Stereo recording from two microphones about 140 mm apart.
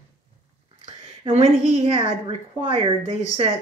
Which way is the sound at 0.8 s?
45° right (ahead or behind).